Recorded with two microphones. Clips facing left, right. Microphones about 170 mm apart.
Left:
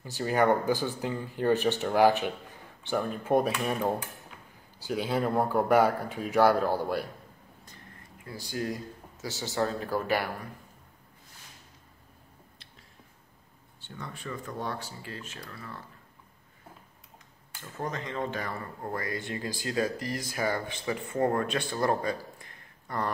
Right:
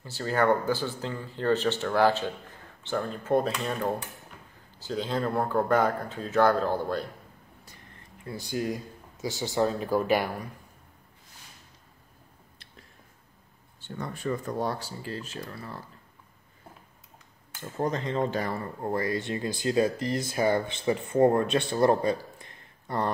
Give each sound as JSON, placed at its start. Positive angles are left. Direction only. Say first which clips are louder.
{"t": 0.0, "sound": "speech", "louder": "even", "side_deg": 15}
{"t": 8.3, "sound": "speech", "louder": "right 3 dB", "side_deg": -20}
{"t": 13.7, "sound": "speech", "louder": "right 6 dB", "side_deg": -45}
{"t": 17.6, "sound": "speech", "louder": "right 6 dB", "side_deg": -35}